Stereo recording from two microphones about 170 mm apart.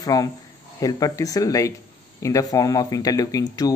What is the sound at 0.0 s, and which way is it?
A man's voice, 20° left (ahead or behind).